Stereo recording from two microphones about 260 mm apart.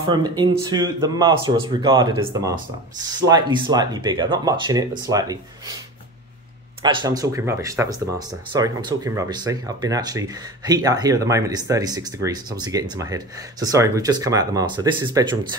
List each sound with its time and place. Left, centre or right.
0.1 s speech: centre
6.8 s speech: centre